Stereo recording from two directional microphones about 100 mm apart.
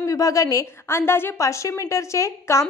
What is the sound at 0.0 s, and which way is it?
A woman's voice, 35° left (ahead or behind).